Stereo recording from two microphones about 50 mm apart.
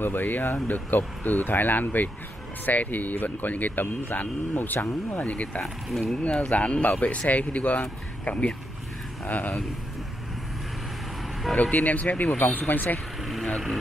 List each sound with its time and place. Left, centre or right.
0.0 s speech: left
4.7 s speech: left
5.2 s speech: left
5.6 s speech: centre
6.1 s speech: centre
11.7 s speech: left
13.2 s speech: centre